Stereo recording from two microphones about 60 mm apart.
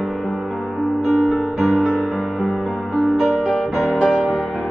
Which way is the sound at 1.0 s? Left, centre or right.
Centre.